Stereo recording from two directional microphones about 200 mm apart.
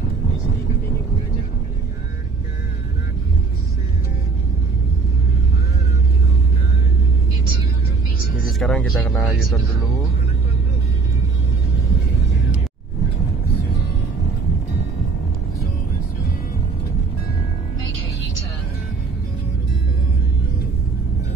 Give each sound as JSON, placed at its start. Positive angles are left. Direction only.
{"t": 8.5, "sound": "speech", "side_deg": 5}